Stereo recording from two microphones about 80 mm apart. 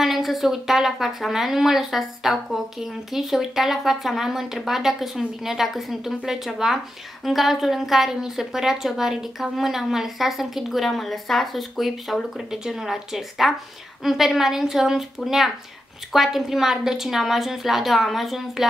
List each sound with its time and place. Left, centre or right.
0.0 s a woman's voice: centre